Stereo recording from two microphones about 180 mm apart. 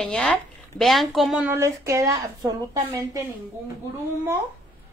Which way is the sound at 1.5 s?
15° right (ahead or behind).